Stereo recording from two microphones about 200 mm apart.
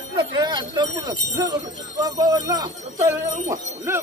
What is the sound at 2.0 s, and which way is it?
Speech, 20° right (ahead or behind).